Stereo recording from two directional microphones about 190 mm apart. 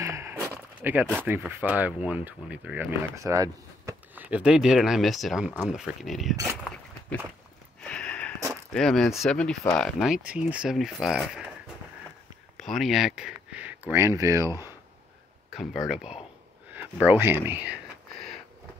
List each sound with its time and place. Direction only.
0.0 s walk: 15° right (ahead or behind)
1.1 s speech: 10° right (ahead or behind)
7.8 s a sound: 5° left (ahead or behind)
8.7 s speech: 5° left (ahead or behind)
12.5 s speech: centre (ahead or behind); by 14.7 s 15° right (ahead or behind)
15.5 s speech: centre (ahead or behind)